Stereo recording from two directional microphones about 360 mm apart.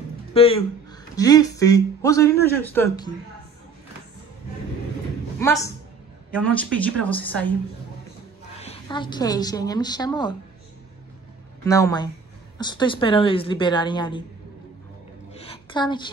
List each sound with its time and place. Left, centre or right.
0.3 s speech: centre
5.4 s speech: centre
8.5 s speech: centre
11.6 s speech: centre
15.3 s a sound: centre